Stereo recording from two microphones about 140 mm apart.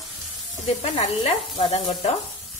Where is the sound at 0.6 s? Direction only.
45° left (ahead or behind).